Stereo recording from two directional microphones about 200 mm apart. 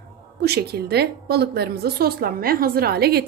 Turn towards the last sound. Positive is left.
turn(degrees=-50)  # may be behind; listen again after turning